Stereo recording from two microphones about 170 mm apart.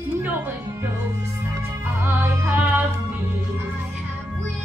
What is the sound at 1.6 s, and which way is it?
Music, 15° right (ahead or behind).